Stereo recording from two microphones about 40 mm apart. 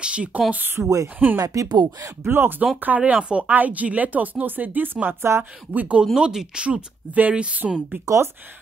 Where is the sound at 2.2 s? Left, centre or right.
Right.